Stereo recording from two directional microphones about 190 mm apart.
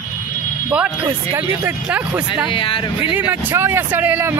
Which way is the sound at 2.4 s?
25° left (ahead or behind).